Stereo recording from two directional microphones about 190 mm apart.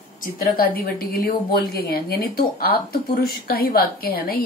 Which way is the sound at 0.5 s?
50° left (ahead or behind).